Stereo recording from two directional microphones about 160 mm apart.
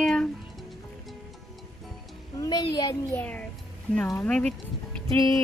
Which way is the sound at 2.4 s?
25° left (ahead or behind).